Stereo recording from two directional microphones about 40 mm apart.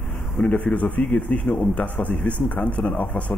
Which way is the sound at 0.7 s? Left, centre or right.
Left.